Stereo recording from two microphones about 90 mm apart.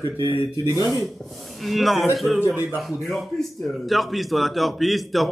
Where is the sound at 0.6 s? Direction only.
50° left (ahead or behind).